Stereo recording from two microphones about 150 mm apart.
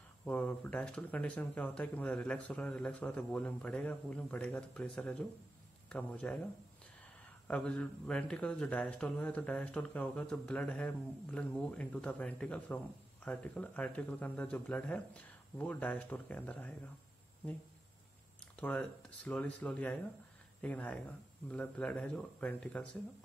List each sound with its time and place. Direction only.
0.2 s speech: 10° left (ahead or behind)
7.4 s speech: 10° left (ahead or behind)
18.6 s speech: 10° left (ahead or behind)